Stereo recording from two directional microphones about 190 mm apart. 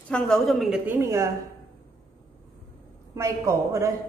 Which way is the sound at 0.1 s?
Centre (ahead or behind).